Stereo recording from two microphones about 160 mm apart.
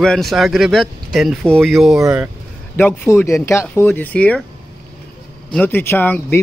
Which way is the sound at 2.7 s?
15° left (ahead or behind).